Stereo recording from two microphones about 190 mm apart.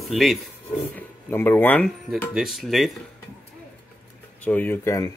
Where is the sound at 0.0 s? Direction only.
Centre (ahead or behind).